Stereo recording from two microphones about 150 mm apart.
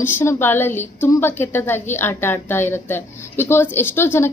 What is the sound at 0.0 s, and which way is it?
A woman's voice, 15° left (ahead or behind).